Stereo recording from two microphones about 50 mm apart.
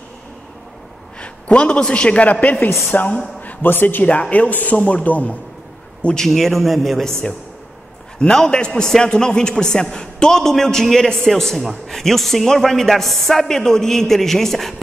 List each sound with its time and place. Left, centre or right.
1.2 s a man's voice: left
3.3 s a sound: left
3.7 s speech: left
4.1 s speech: left
6.0 s a man's voice: centre